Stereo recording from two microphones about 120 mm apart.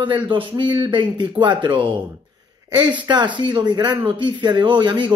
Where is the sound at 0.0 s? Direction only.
45° right (ahead or behind).